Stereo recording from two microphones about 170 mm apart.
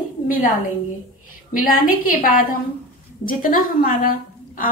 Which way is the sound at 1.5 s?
55° left (ahead or behind).